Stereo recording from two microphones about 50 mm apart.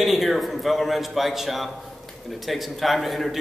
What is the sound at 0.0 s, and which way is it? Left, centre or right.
A man's voice, centre.